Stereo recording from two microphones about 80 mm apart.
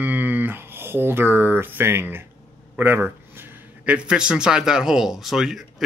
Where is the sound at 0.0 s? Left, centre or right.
Right.